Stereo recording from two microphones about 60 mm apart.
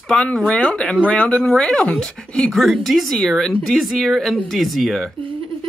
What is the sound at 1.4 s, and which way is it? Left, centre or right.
Speech, centre.